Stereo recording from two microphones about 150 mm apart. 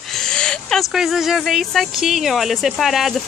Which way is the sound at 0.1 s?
5° left (ahead or behind).